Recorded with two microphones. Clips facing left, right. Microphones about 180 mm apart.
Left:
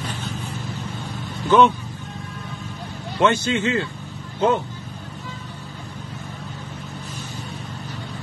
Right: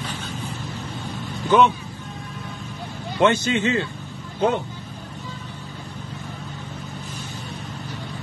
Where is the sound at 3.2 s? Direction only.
20° right (ahead or behind).